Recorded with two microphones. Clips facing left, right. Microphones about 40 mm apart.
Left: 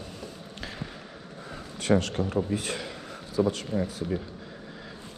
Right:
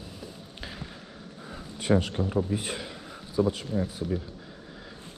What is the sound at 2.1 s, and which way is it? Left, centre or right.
Speech, centre.